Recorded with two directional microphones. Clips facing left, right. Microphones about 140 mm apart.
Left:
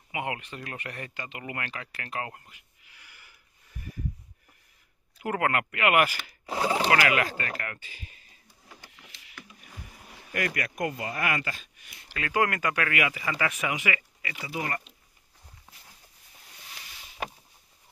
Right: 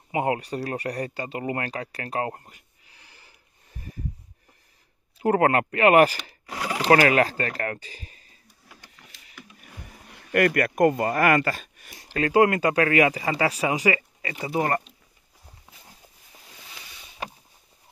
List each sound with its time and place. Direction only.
0.1 s speech: 35° right (ahead or behind)
5.2 s speech: 35° right (ahead or behind)
6.4 s a sound: 25° left (ahead or behind)
6.9 s speech: 35° right (ahead or behind)
10.3 s speech: 55° right (ahead or behind)